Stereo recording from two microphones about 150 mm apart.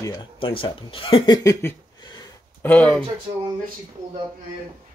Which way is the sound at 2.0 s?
30° left (ahead or behind).